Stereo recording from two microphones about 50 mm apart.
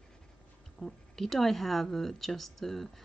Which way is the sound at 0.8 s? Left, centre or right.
Centre.